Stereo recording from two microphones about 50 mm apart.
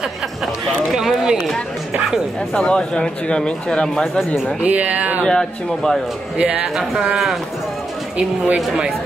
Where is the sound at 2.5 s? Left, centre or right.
Centre.